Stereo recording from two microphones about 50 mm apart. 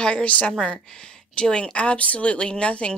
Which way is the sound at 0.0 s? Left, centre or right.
Left.